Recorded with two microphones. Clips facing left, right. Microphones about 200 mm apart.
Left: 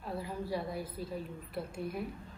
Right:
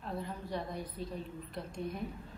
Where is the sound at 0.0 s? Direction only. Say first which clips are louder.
Left 2 dB; 5° left (ahead or behind).